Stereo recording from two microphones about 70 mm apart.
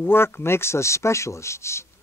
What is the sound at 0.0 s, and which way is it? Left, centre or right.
Speech, left.